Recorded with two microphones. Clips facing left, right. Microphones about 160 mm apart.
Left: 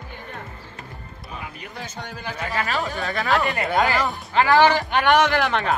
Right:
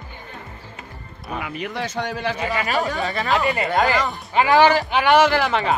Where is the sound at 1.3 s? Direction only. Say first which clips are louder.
Right 9 dB; 80° right.